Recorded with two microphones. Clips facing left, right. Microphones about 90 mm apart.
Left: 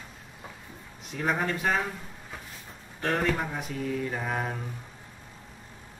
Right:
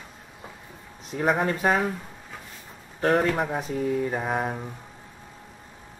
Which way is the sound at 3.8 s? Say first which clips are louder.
Right 4 dB; 15° right (ahead or behind).